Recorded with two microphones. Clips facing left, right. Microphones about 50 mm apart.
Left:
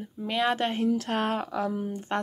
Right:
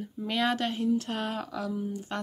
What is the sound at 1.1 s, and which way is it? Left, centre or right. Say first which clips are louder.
Speech: left 5 dB; left.